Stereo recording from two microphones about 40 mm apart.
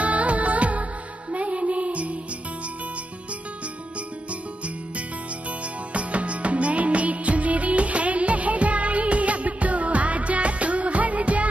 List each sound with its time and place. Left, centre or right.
0.0 s music of bollywood: right
1.3 s music: right
5.9 s music: right